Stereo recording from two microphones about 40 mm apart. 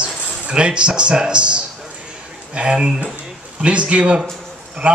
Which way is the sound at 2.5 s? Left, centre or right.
Right.